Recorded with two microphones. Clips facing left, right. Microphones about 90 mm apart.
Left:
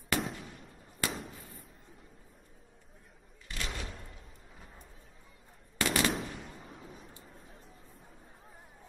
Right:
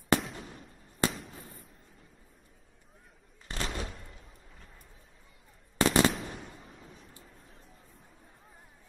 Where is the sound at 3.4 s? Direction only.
35° right (ahead or behind).